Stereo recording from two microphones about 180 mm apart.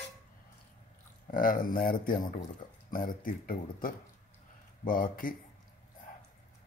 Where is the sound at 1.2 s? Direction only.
50° left (ahead or behind).